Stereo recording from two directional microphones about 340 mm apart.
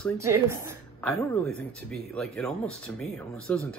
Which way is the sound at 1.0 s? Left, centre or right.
Centre.